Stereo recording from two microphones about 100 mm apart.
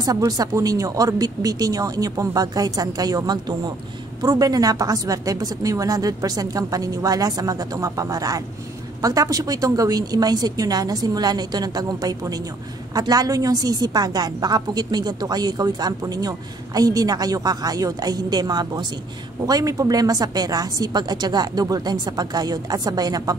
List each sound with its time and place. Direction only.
0.3 s a woman's voice: 35° right (ahead or behind)